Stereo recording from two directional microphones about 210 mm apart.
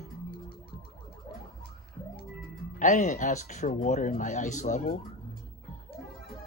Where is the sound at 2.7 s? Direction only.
35° left (ahead or behind).